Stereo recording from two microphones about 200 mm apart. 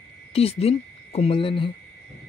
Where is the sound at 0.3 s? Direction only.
30° left (ahead or behind).